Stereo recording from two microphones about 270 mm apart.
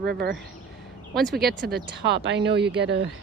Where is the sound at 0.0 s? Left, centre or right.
Right.